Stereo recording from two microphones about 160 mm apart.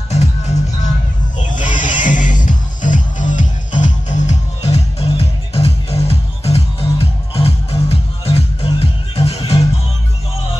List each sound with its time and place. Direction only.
0.1 s music: 45° left (ahead or behind)